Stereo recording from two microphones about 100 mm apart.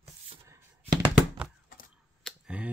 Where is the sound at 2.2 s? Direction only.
5° left (ahead or behind).